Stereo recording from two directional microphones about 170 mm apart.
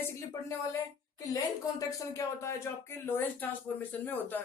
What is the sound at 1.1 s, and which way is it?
Speech, 20° left (ahead or behind).